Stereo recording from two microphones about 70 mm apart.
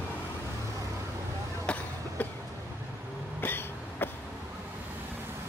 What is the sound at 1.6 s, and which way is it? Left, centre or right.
Vehicle, centre.